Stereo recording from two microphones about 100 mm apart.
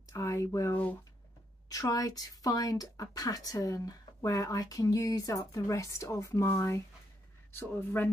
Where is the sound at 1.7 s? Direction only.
40° left (ahead or behind).